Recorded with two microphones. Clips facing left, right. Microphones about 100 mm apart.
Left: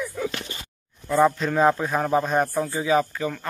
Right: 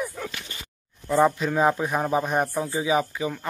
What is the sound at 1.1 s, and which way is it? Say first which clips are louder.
A man's voice: left 1 dB; 15° right (ahead or behind).